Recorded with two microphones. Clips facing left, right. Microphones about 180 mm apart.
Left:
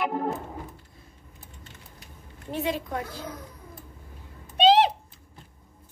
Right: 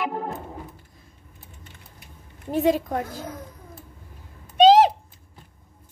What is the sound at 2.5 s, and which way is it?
Speech, 45° right (ahead or behind).